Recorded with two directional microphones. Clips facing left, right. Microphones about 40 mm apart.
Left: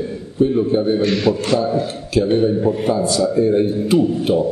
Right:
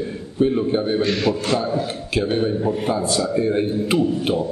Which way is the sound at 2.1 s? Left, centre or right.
Right.